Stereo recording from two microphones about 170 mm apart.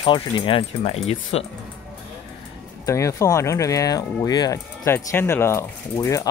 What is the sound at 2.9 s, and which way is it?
Speech, 15° left (ahead or behind).